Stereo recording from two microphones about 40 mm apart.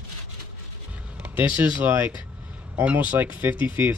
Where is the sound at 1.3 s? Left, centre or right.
Right.